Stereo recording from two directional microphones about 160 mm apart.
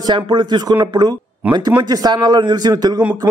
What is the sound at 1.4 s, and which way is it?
Speech, 10° right (ahead or behind).